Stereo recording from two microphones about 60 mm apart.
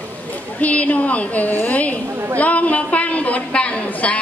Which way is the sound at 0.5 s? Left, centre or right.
Left.